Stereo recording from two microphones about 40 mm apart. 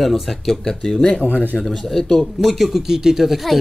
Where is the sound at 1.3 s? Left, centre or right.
Left.